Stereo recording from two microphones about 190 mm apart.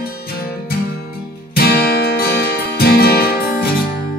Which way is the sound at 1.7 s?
55° left (ahead or behind).